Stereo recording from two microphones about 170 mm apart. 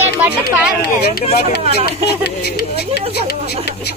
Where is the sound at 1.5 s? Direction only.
75° left (ahead or behind).